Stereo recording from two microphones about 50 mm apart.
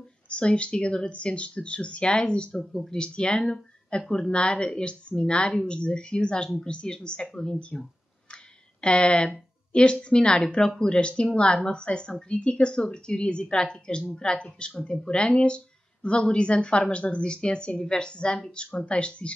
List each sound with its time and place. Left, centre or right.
0.3 s speech: left
2.7 s speech: centre
3.0 s speech: centre